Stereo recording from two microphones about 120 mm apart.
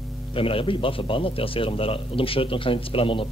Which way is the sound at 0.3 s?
50° left (ahead or behind).